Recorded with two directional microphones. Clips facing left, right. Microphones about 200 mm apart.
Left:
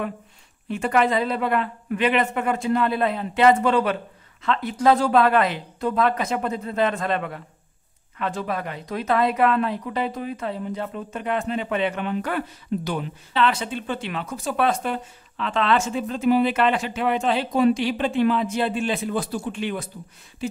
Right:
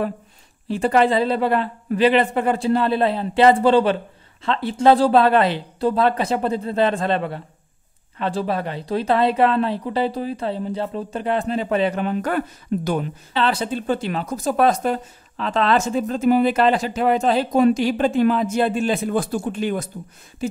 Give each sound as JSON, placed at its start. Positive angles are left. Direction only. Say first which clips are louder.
{"t": 0.7, "sound": "speech", "louder": "right 4 dB", "side_deg": -35}
{"t": 13.3, "sound": "speech", "louder": "right 1 dB", "side_deg": -35}